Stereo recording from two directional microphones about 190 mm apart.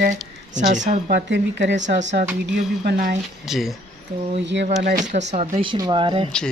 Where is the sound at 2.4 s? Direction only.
55° right (ahead or behind).